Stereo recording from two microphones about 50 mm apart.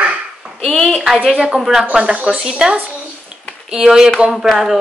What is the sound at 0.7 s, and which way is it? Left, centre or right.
Speech, centre.